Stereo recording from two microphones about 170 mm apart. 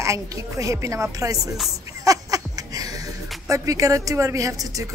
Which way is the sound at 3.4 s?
20° right (ahead or behind).